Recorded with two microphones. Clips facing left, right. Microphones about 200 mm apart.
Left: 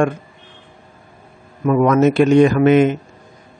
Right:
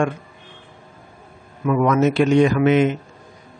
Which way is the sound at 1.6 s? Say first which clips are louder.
Left 4 dB; 45° left (ahead or behind).